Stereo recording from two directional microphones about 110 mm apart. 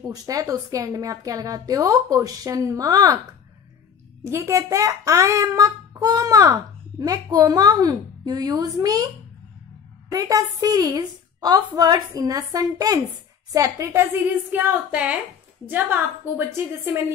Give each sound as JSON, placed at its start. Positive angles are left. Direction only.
{"t": 0.0, "sound": "a child's voice", "side_deg": -35}
{"t": 4.2, "sound": "a child's voice", "side_deg": -25}
{"t": 10.1, "sound": "a child's voice", "side_deg": -35}
{"t": 14.5, "sound": "a sound", "side_deg": -15}
{"t": 15.6, "sound": "a woman's voice", "side_deg": -15}